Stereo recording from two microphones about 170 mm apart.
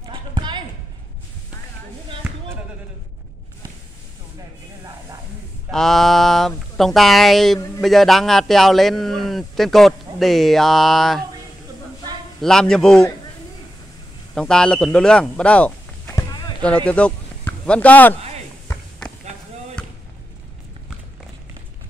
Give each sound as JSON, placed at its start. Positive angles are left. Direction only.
{"t": 0.0, "sound": "a sound", "side_deg": -30}
{"t": 2.2, "sound": "basketball bounce", "side_deg": -10}
{"t": 5.7, "sound": "a man's voice", "side_deg": 0}
{"t": 12.4, "sound": "a man's voice", "side_deg": 5}
{"t": 14.3, "sound": "speech", "side_deg": 5}